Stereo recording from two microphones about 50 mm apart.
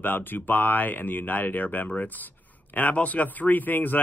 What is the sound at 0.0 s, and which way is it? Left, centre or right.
Speech, left.